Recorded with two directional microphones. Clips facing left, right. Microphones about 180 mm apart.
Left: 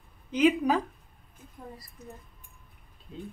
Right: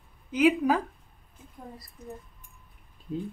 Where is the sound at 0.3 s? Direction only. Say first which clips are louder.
Right 1 dB; 5° right (ahead or behind).